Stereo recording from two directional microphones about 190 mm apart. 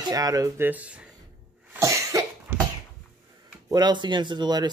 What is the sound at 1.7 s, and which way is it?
Cough, 15° right (ahead or behind).